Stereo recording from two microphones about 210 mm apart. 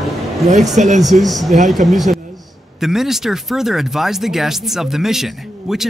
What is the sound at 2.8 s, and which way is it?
Speech, centre (ahead or behind).